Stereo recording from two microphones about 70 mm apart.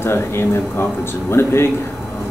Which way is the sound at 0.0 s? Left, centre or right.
Left.